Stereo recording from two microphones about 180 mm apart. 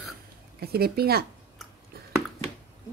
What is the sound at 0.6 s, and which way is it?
Speech, 60° right (ahead or behind).